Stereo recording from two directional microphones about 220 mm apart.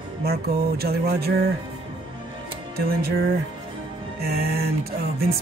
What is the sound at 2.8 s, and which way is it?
Speech, 45° right (ahead or behind).